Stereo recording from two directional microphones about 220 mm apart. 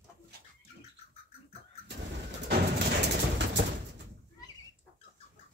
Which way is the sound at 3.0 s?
50° right (ahead or behind).